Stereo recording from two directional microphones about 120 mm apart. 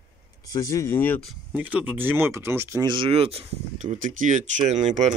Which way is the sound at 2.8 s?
45° right (ahead or behind).